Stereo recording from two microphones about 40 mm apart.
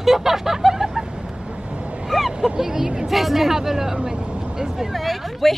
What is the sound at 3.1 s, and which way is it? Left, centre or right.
Speech, centre.